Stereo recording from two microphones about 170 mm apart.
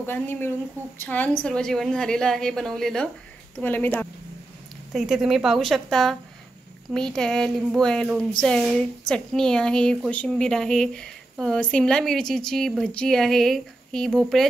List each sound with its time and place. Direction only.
0.0 s a woman's voice: 10° left (ahead or behind)
4.9 s a woman's voice: centre (ahead or behind)